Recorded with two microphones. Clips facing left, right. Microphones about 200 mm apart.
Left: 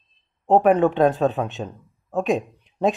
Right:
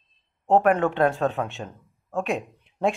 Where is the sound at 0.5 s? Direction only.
15° left (ahead or behind).